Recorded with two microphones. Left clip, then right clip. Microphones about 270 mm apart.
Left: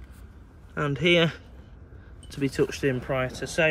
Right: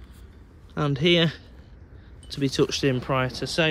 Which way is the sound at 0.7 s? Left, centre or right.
Centre.